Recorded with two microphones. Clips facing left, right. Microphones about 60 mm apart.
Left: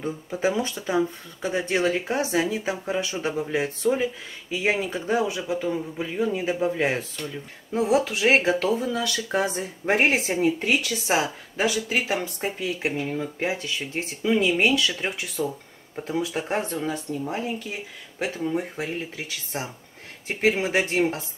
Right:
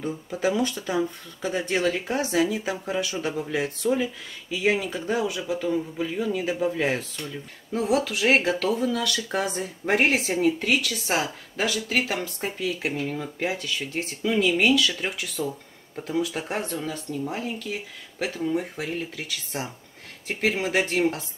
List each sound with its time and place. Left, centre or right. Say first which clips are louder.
0.0 s a woman's voice: left 1 dB; left
6.8 s a woman's voice: left 1 dB; left